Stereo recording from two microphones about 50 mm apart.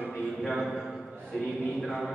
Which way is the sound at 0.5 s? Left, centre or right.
Centre.